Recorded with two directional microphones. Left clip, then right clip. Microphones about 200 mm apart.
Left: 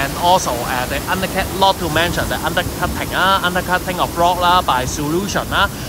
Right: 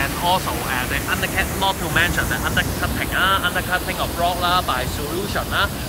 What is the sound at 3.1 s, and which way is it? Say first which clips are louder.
Speech: left 4 dB; 30° left (ahead or behind).